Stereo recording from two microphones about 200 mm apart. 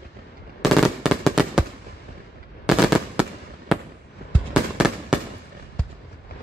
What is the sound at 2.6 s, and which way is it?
Fireworks, 5° right (ahead or behind).